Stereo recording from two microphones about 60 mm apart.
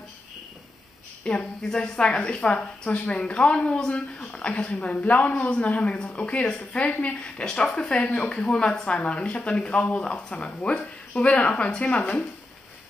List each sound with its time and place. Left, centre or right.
1.2 s a woman's voice: centre
1.6 s a woman's voice: centre; by 3.0 s left
3.3 s a woman's voice: centre
3.6 s speech: centre
3.9 s speech: centre
5.8 s a woman's voice: centre
6.2 s speech: centre
7.3 s a woman's voice: centre